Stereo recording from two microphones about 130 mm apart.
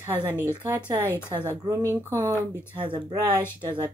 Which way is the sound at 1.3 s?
25° right (ahead or behind).